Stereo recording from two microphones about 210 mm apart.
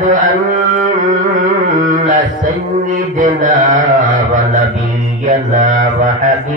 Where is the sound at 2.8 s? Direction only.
35° right (ahead or behind).